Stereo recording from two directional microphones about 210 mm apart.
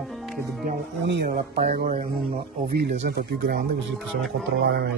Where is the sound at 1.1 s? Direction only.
55° right (ahead or behind).